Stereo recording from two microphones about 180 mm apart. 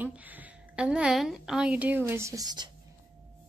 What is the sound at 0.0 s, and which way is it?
A woman's voice, 10° right (ahead or behind).